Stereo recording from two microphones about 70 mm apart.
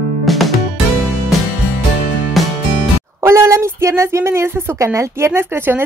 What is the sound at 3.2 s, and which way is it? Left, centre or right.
A woman's voice, right.